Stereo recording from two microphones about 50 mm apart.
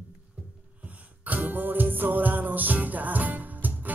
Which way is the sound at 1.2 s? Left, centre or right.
Right.